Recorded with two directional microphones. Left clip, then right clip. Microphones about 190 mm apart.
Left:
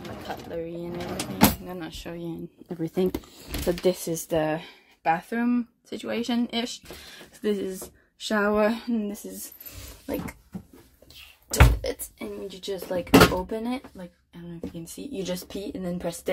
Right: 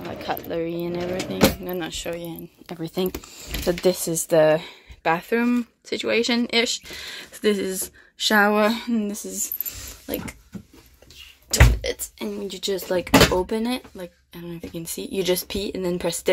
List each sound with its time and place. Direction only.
0.3 s speech: 25° right (ahead or behind)
2.0 s speech: 5° left (ahead or behind)
12.2 s speech: 10° right (ahead or behind)